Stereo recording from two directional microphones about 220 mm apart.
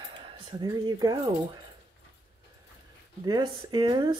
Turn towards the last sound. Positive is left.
turn(degrees=-20)  # may be behind; listen again after turning